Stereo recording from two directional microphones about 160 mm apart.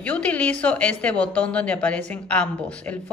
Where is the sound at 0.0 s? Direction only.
10° left (ahead or behind).